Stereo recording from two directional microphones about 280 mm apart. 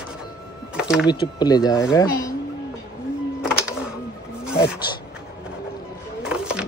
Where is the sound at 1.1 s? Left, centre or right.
Centre.